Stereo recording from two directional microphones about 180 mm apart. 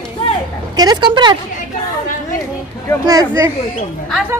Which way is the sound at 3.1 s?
20° right (ahead or behind).